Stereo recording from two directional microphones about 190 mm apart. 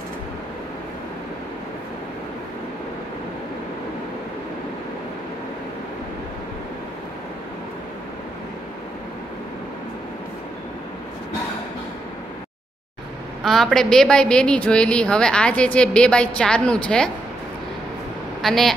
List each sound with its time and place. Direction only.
13.4 s a woman's voice: centre (ahead or behind)
18.4 s a woman's voice: centre (ahead or behind)